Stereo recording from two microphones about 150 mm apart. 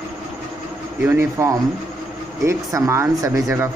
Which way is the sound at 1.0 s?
15° right (ahead or behind).